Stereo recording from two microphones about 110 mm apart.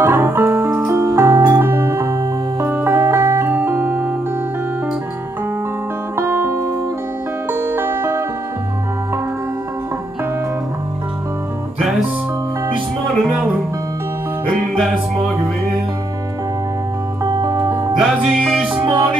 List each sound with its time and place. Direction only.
0.0 s music: 20° right (ahead or behind)
6.1 s music: 25° right (ahead or behind)
17.2 s music: 30° right (ahead or behind)
17.9 s music: 5° right (ahead or behind)